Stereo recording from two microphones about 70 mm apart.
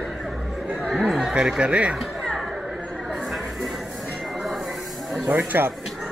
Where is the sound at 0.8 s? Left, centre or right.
Centre.